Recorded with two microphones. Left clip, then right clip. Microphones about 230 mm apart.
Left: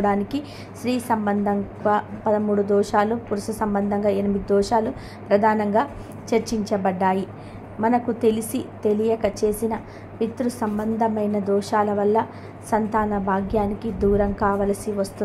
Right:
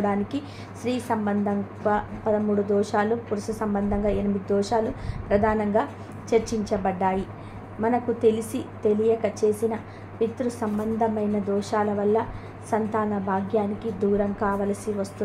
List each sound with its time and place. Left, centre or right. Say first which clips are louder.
0.0 s a woman's voice: left 4 dB; left